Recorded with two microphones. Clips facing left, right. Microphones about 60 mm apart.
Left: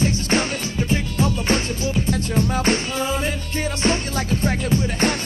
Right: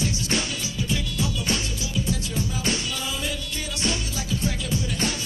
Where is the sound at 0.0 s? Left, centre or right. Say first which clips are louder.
Left 6 dB; left.